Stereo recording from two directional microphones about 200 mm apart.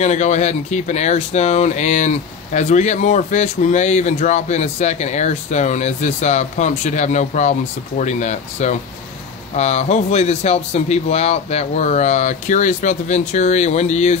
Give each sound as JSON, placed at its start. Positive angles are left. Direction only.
{"t": 0.0, "sound": "speech", "side_deg": 35}